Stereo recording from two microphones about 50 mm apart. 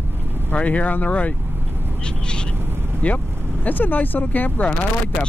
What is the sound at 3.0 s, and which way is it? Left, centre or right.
Speech, left.